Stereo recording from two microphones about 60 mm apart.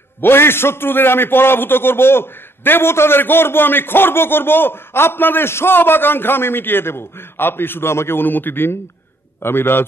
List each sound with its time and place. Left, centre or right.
0.2 s a man's voice: left